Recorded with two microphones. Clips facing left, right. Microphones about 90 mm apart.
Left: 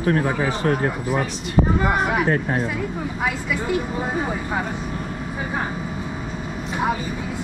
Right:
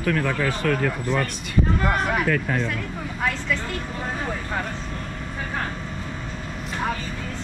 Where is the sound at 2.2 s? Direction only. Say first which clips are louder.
Left 2 dB; 35° left (ahead or behind).